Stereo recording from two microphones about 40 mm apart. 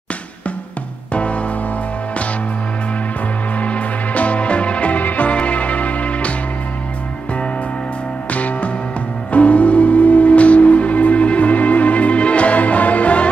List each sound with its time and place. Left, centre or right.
1.1 s music: left
3.5 s music: left
8.3 s music: left